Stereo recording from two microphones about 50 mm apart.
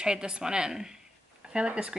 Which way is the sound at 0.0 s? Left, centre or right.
Centre.